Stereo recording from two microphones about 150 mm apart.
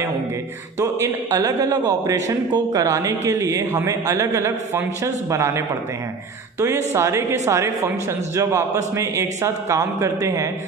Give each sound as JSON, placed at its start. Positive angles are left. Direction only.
{"t": 0.7, "sound": "a man's voice", "side_deg": -20}
{"t": 6.9, "sound": "a man's voice", "side_deg": -20}